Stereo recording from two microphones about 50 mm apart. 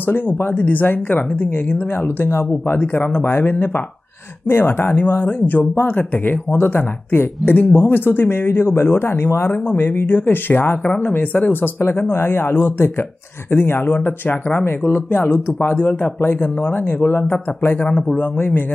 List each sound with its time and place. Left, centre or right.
0.0 s speech: left
17.8 s speech: left
18.2 s speech: left